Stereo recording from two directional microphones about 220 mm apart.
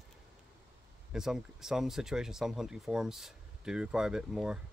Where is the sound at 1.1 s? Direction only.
5° right (ahead or behind).